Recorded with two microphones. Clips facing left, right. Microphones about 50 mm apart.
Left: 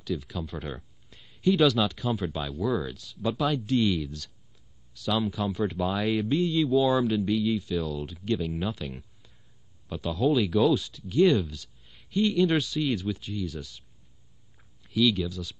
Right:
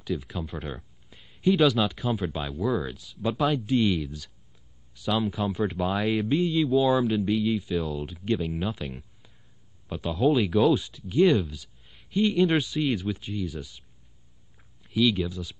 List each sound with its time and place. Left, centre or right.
0.0 s a sound: centre
1.6 s a man's voice: centre
5.0 s a man's voice: centre
10.7 s speech: centre
11.2 s a man's voice: centre